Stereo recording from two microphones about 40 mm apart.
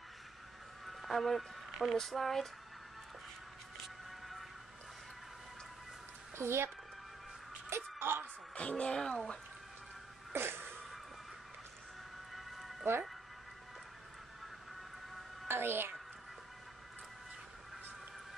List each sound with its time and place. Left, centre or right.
0.8 s speech: centre
6.3 s speech: right
7.7 s music: right
8.5 s speech: left
10.3 s fart: right
12.9 s speech: right
15.4 s music: right